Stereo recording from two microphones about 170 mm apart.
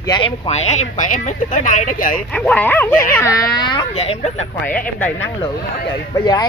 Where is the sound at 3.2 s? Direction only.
20° left (ahead or behind).